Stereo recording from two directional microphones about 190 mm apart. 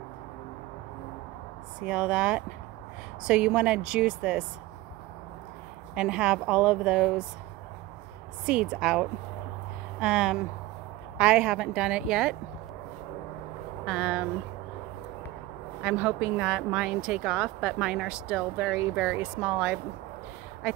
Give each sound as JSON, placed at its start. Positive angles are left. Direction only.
{"t": 1.8, "sound": "speech", "side_deg": -5}
{"t": 5.9, "sound": "speech", "side_deg": -5}
{"t": 8.5, "sound": "speech", "side_deg": -5}
{"t": 13.8, "sound": "speech", "side_deg": -5}
{"t": 15.8, "sound": "speech", "side_deg": -5}